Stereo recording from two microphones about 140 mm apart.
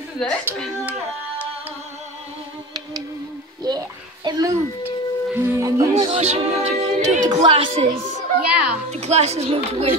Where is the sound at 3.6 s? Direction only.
30° right (ahead or behind).